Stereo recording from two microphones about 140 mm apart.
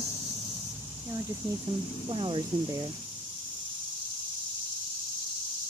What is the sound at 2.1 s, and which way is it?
Speech, 40° right (ahead or behind).